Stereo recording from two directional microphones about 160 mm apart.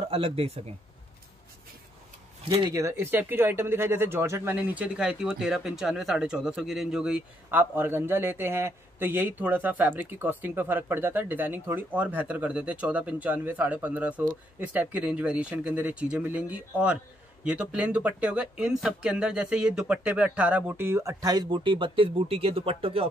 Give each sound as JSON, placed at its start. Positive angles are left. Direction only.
{"t": 0.1, "sound": "speech", "side_deg": -35}
{"t": 2.7, "sound": "speech", "side_deg": -15}